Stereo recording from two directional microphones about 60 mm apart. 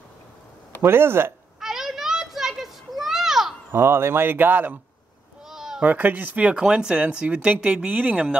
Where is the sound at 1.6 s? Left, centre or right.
Centre.